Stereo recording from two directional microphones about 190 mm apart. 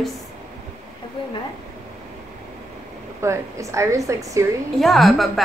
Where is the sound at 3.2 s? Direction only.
15° right (ahead or behind).